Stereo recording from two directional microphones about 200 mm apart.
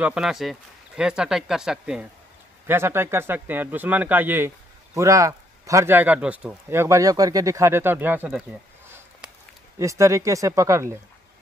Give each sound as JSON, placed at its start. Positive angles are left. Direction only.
{"t": 0.0, "sound": "speech", "side_deg": -5}